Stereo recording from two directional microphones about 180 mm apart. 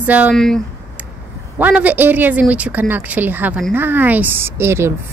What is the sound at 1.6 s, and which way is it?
A woman's voice, 10° right (ahead or behind).